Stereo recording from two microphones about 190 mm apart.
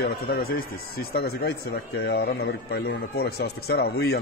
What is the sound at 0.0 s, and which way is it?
A man's voice, 55° left (ahead or behind).